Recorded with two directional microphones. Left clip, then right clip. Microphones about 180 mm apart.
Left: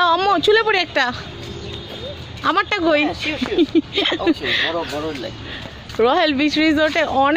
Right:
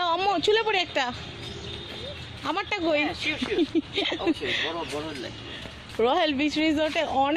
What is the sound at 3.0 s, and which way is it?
Speech, 50° left (ahead or behind).